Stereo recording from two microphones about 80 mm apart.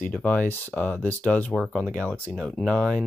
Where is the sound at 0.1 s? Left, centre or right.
Centre.